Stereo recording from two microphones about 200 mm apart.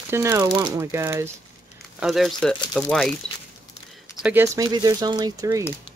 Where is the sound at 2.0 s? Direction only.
Centre (ahead or behind).